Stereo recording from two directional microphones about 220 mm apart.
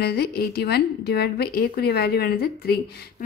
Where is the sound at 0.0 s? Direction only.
45° left (ahead or behind).